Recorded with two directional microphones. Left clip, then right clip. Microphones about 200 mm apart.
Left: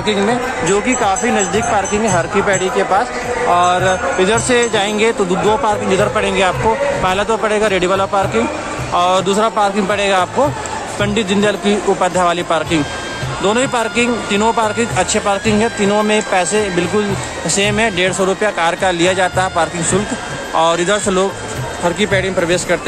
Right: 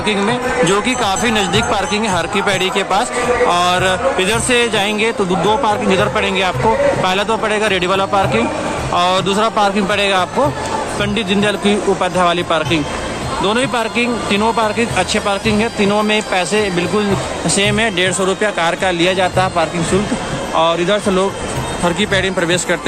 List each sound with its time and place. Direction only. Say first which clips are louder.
0.0 s speech: left 1 dB; 5° left (ahead or behind); by 2.7 s 10° right (ahead or behind)
3.5 s speech: left 1 dB; centre (ahead or behind)
20.5 s speech: left 1 dB; 25° left (ahead or behind)
21.8 s speech: left 1 dB; 5° left (ahead or behind)